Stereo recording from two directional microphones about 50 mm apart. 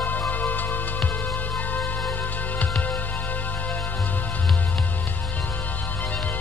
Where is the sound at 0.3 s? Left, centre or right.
Left.